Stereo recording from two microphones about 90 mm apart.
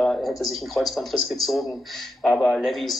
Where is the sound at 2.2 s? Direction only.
15° left (ahead or behind).